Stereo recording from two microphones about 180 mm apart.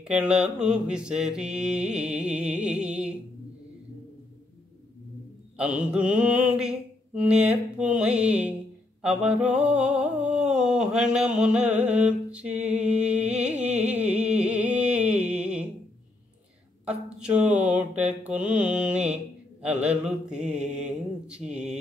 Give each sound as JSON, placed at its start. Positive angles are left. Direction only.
{"t": 0.1, "sound": "mantra", "side_deg": -5}
{"t": 5.6, "sound": "mantra", "side_deg": -5}
{"t": 10.3, "sound": "a sound", "side_deg": -5}
{"t": 13.8, "sound": "music", "side_deg": -5}
{"t": 16.8, "sound": "mantra", "side_deg": -5}